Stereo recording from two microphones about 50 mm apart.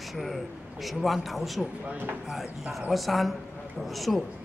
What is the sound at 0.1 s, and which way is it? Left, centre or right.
A man's voice, centre.